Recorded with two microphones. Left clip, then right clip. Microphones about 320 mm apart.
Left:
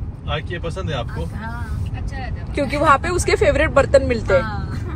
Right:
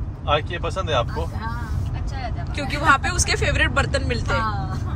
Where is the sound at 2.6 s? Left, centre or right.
Left.